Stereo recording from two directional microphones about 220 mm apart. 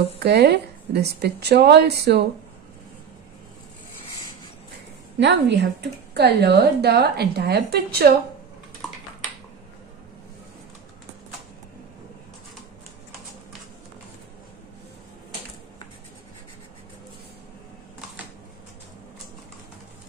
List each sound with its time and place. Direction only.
0.2 s speech: 50° right (ahead or behind)
5.2 s speech: 50° right (ahead or behind)